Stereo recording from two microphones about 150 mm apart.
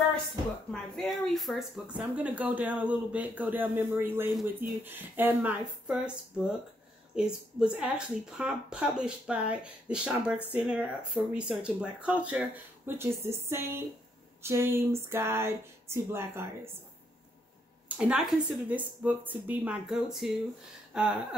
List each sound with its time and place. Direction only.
0.7 s speech: centre (ahead or behind); by 16.4 s 15° right (ahead or behind)
17.8 s speech: 10° right (ahead or behind)